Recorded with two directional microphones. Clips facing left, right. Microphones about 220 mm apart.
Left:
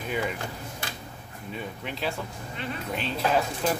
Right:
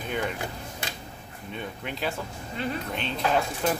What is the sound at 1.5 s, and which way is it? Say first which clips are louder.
Speech: even; centre (ahead or behind).